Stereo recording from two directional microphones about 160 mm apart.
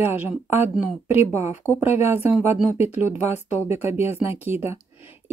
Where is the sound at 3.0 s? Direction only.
45° left (ahead or behind).